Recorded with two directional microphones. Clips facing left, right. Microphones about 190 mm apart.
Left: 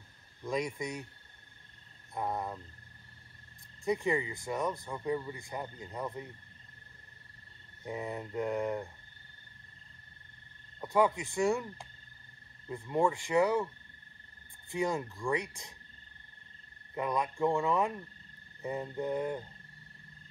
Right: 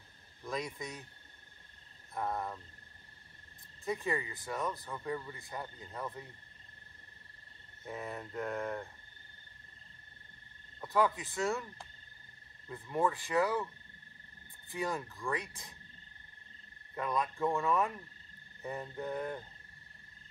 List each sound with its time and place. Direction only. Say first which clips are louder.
0.5 s speech: left 5 dB; 15° left (ahead or behind)
2.1 s speech: left 1 dB; 15° left (ahead or behind)
3.8 s speech: left 5 dB; 15° left (ahead or behind)
7.8 s speech: left 4 dB; 15° left (ahead or behind)
10.8 s speech: left 3 dB; 15° left (ahead or behind)
14.7 s speech: left 4 dB; 15° left (ahead or behind)
16.9 s speech: left 2 dB; 15° left (ahead or behind)